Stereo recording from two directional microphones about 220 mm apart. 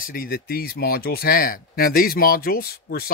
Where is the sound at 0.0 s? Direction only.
40° left (ahead or behind).